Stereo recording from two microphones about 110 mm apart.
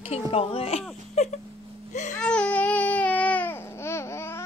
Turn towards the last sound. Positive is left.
turn(degrees=25)  # may be behind; listen again after turning